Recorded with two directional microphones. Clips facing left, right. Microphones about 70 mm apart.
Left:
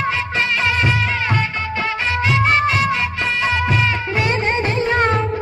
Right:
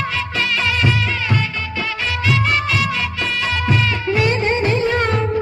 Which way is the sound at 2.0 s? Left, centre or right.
Left.